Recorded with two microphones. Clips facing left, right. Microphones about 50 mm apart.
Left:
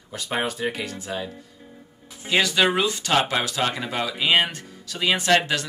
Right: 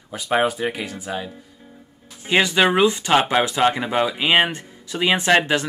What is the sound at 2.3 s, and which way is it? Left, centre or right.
Speech, right.